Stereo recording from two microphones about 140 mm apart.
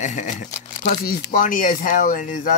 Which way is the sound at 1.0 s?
85° left.